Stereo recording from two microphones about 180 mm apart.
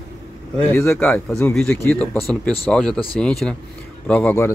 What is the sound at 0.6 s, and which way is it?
A man's voice, 15° left (ahead or behind).